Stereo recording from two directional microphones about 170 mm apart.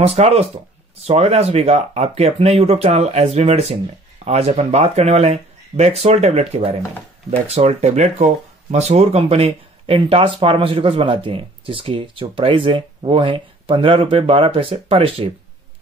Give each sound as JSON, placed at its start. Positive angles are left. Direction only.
{"t": 0.0, "sound": "speech", "side_deg": -35}